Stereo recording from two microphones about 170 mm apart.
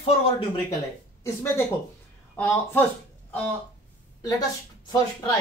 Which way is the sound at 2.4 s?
10° left (ahead or behind).